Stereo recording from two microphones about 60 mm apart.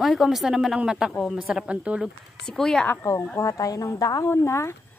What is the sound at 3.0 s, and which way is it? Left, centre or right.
Speech, left.